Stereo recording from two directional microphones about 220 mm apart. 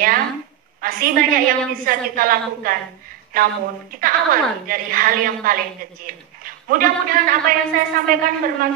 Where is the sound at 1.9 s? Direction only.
40° right (ahead or behind).